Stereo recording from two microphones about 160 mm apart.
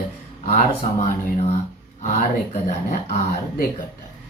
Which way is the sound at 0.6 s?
45° left (ahead or behind).